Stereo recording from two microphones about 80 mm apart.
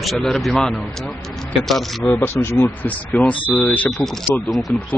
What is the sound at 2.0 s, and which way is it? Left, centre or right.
Speech, left.